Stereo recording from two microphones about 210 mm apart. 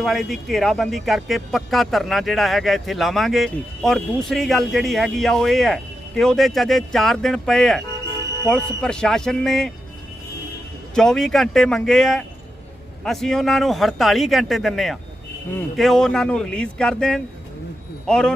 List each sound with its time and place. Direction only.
0.0 s speech: centre (ahead or behind)
11.0 s speech: centre (ahead or behind)